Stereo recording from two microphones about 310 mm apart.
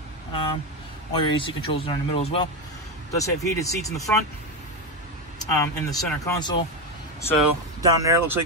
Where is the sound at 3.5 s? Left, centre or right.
Centre.